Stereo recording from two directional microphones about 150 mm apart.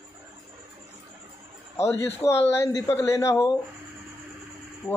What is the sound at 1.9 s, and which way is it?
Speech, 15° left (ahead or behind).